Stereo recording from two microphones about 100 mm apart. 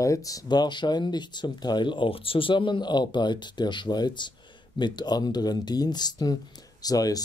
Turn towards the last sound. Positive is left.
turn(degrees=40)  # may be behind; listen again after turning